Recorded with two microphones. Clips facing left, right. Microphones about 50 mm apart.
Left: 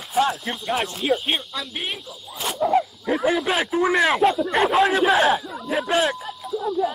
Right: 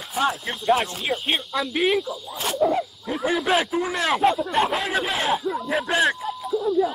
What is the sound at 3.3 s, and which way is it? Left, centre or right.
Speech, centre.